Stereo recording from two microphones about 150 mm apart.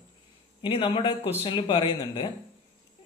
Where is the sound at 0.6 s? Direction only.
35° left (ahead or behind).